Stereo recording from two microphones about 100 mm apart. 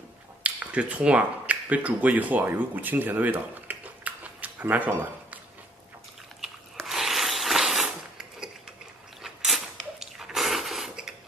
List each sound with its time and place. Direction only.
0.4 s speech: 15° right (ahead or behind)
6.4 s biting: 5° right (ahead or behind)
7.8 s a sound: 5° right (ahead or behind)